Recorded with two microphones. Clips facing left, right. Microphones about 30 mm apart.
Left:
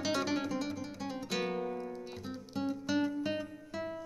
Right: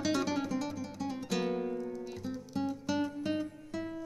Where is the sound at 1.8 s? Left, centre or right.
Centre.